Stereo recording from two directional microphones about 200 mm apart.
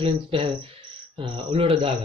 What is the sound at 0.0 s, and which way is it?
Speech, 25° right (ahead or behind).